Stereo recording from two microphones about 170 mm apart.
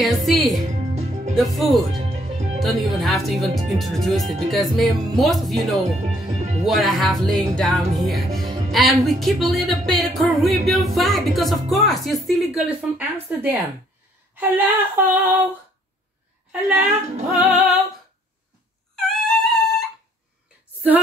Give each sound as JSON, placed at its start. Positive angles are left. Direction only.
{"t": 0.0, "sound": "a woman's voice", "side_deg": 0}
{"t": 0.9, "sound": "music", "side_deg": -40}
{"t": 1.3, "sound": "a woman's voice", "side_deg": 0}
{"t": 2.0, "sound": "music", "side_deg": -35}
{"t": 2.6, "sound": "a woman's voice", "side_deg": 0}
{"t": 6.0, "sound": "speech", "side_deg": -40}
{"t": 6.6, "sound": "a woman's voice", "side_deg": 0}
{"t": 14.3, "sound": "female singing", "side_deg": -10}
{"t": 17.4, "sound": "female singing", "side_deg": -10}
{"t": 18.9, "sound": "music", "side_deg": 0}